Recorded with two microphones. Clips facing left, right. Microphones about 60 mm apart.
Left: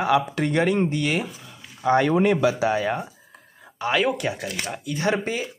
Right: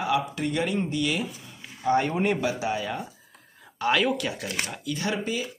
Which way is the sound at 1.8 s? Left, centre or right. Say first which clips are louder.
Left 5 dB; left.